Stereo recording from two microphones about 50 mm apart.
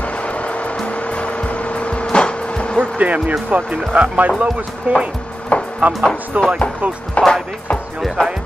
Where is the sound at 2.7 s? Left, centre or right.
Right.